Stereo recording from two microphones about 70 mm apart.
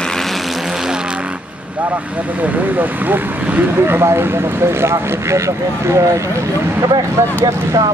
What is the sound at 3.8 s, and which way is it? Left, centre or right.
Speech, right.